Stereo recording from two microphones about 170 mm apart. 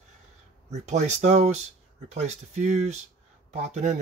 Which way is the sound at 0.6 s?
40° right (ahead or behind).